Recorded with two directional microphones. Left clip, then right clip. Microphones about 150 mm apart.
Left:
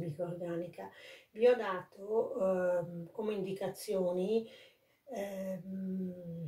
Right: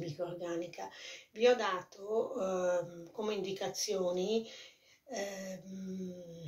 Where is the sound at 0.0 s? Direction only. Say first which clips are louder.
Even; 15° left (ahead or behind).